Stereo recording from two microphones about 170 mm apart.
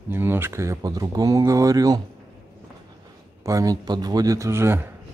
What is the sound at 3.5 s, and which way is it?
Speech, 20° right (ahead or behind).